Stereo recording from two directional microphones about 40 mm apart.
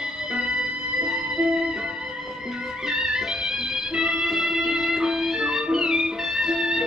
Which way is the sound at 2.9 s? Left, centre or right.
Centre.